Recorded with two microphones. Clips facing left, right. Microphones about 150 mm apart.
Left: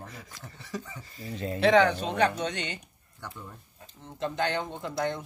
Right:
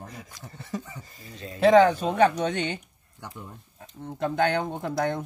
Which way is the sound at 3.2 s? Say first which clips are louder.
Right 1 dB; 20° right (ahead or behind).